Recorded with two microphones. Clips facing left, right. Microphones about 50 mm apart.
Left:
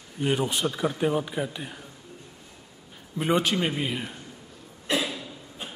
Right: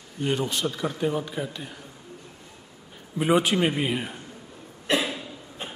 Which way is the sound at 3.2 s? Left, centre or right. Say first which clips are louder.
Right 3 dB; centre.